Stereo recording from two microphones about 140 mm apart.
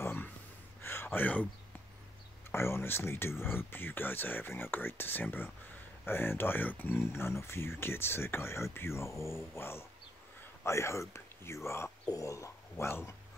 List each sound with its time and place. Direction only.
0.0 s gasp: 15° left (ahead or behind)
0.8 s a sound: 15° left (ahead or behind)
2.5 s speech: 20° left (ahead or behind)